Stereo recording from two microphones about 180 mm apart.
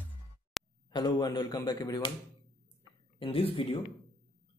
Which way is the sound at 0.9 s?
25° left (ahead or behind).